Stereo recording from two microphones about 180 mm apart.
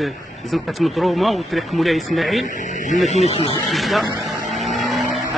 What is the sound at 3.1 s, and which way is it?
Speech, 35° left (ahead or behind).